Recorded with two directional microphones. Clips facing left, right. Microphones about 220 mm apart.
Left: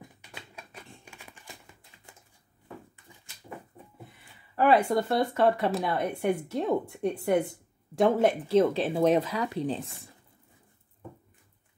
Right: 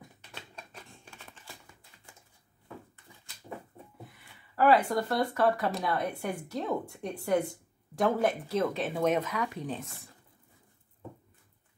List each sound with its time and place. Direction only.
0.3 s typewriter: 10° left (ahead or behind)
4.6 s speech: 25° left (ahead or behind)